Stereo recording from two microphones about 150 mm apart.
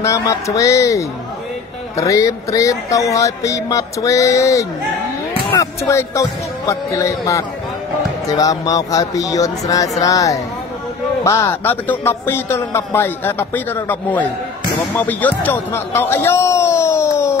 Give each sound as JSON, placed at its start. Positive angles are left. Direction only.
{"t": 0.0, "sound": "speech", "side_deg": 20}